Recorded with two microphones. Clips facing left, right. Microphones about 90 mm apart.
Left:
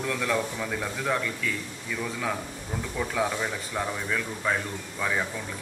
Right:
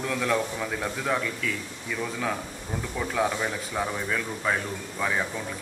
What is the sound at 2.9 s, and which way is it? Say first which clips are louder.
A man's voice: right 1 dB; centre (ahead or behind).